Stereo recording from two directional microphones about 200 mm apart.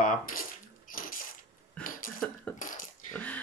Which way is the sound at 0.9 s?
45° left (ahead or behind).